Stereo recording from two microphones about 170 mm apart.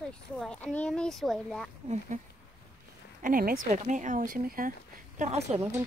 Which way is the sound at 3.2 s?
55° right (ahead or behind).